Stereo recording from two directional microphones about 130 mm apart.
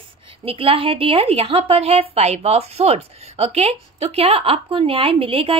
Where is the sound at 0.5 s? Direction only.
45° right (ahead or behind).